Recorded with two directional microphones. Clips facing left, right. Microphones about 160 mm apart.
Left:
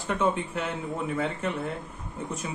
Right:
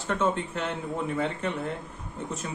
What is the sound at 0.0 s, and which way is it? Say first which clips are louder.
Speech: even; 10° left (ahead or behind).